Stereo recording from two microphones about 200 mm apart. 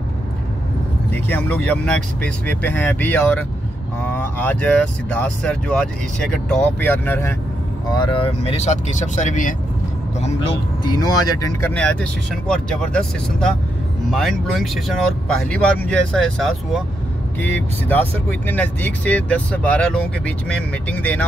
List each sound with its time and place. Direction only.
1.1 s speech: 10° left (ahead or behind)
7.9 s speech: 25° left (ahead or behind); by 9.6 s 40° left (ahead or behind)
10.2 s speech: 25° left (ahead or behind)
11.7 s speech: 5° left (ahead or behind)